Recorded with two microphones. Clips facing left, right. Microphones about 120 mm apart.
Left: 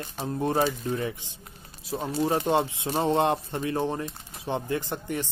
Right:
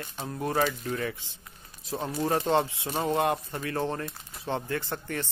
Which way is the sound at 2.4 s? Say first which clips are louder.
Left 1 dB; 15° left (ahead or behind).